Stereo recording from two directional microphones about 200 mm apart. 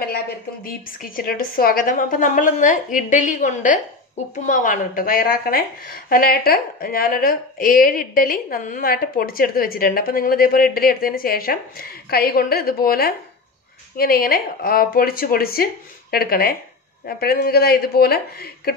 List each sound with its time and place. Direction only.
0.7 s a woman's voice: 45° left (ahead or behind)